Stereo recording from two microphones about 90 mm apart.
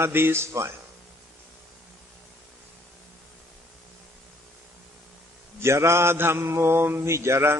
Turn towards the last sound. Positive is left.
turn(degrees=-30)  # may be behind; listen again after turning